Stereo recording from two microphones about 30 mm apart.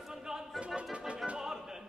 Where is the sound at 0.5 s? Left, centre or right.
Right.